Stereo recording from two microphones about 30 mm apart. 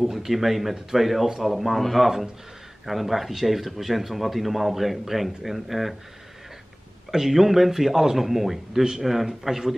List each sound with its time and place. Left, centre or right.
0.1 s speech: centre
7.1 s a man's voice: centre